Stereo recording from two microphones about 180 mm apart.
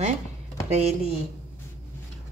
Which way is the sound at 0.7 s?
35° right (ahead or behind).